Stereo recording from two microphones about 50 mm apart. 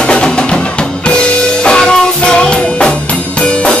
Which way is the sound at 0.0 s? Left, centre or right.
Centre.